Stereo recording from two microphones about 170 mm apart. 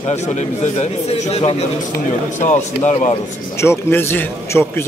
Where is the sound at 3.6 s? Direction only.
15° left (ahead or behind).